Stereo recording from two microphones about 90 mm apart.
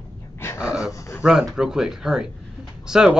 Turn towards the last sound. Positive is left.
turn(degrees=-5)  # may be behind; listen again after turning